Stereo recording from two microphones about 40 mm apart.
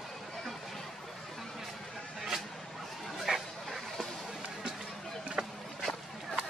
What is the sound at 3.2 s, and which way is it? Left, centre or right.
Dog, centre.